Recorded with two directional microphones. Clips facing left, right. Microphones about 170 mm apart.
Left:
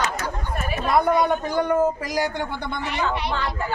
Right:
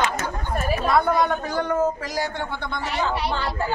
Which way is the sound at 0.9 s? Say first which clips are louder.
Left 2 dB; 10° left (ahead or behind).